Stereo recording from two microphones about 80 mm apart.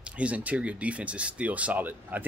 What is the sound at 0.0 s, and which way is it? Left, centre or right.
Speech, centre.